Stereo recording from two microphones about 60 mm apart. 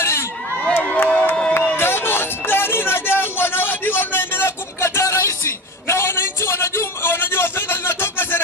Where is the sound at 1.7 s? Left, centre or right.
Left.